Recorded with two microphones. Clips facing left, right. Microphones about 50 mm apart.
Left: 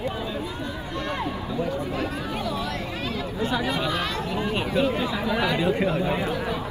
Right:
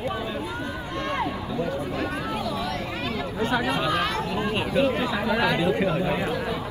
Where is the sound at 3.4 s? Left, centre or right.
Right.